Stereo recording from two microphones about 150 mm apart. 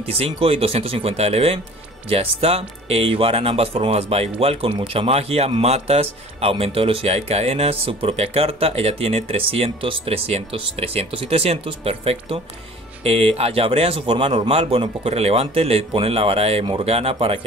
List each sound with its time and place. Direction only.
0.0 s speech: 40° right (ahead or behind)